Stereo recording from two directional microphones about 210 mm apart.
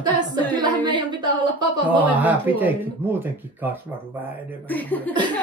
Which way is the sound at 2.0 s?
5° right (ahead or behind).